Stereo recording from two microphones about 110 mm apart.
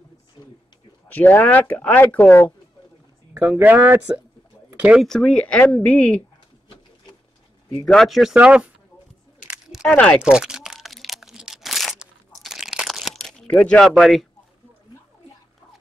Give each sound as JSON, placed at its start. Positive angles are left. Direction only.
{"t": 0.4, "sound": "a sound", "side_deg": 35}
{"t": 1.0, "sound": "speech", "side_deg": 15}
{"t": 3.3, "sound": "speech", "side_deg": -15}
{"t": 4.6, "sound": "a sound", "side_deg": -10}
{"t": 5.0, "sound": "speech", "side_deg": 5}
{"t": 7.8, "sound": "speech", "side_deg": 5}
{"t": 9.4, "sound": "single-lens reflex camera", "side_deg": -10}
{"t": 9.8, "sound": "speech", "side_deg": 10}
{"t": 10.2, "sound": "crumpling", "side_deg": -10}
{"t": 13.6, "sound": "speech", "side_deg": 5}